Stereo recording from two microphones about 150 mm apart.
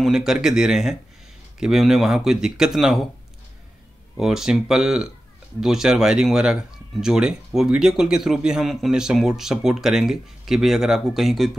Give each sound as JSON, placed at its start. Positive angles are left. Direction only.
{"t": 0.0, "sound": "speech", "side_deg": -5}
{"t": 4.2, "sound": "speech", "side_deg": -5}